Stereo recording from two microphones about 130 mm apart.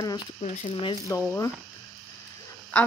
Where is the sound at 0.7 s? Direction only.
40° left (ahead or behind).